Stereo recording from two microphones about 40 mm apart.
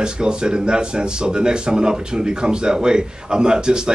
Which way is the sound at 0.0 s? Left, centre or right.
Right.